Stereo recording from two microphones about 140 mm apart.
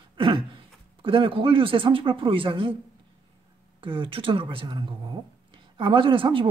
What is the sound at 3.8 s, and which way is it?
Speech, 40° right (ahead or behind).